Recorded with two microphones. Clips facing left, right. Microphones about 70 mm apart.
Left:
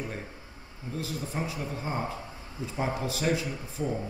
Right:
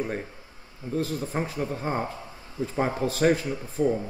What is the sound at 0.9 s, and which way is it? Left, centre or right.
A man's voice, right.